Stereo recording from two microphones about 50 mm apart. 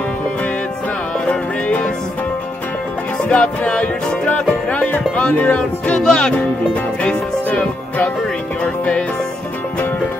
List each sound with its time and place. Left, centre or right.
1.2 s music: left
3.3 s music: left
5.9 s speech: centre
6.7 s music: left